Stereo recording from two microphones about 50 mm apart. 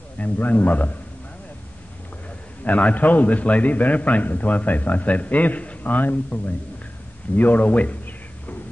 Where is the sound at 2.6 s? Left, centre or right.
Left.